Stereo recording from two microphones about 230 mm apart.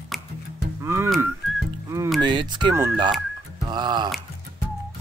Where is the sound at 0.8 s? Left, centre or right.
Centre.